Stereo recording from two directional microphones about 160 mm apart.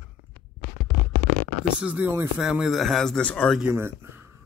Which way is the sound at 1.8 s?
10° right (ahead or behind).